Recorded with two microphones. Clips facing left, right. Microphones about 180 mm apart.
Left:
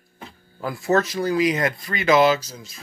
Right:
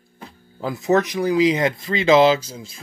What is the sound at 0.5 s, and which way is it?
Speech, 20° right (ahead or behind).